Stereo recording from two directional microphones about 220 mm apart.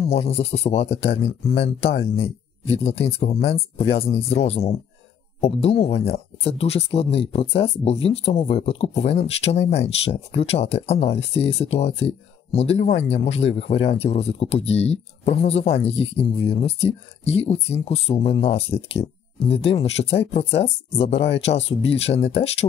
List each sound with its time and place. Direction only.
0.1 s speech: 25° left (ahead or behind)